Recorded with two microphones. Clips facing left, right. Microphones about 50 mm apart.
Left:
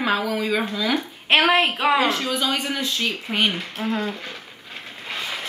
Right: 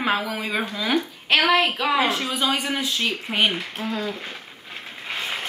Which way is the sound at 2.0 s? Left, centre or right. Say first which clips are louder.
Left 1 dB; centre.